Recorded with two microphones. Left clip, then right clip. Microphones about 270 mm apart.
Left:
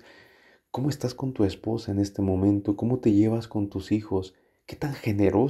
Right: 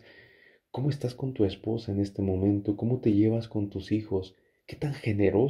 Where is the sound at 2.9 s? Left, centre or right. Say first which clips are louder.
Left 2 dB; centre.